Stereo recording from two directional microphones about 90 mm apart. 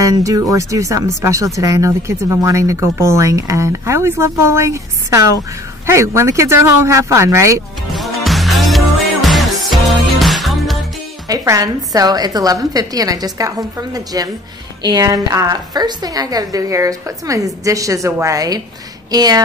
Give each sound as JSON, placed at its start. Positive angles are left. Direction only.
{"t": 0.0, "sound": "speech", "side_deg": -40}
{"t": 7.9, "sound": "music", "side_deg": 0}
{"t": 11.2, "sound": "a woman's voice", "side_deg": -40}